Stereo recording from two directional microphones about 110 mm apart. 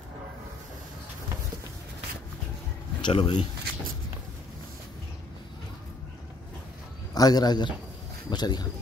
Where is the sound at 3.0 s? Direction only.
45° left (ahead or behind).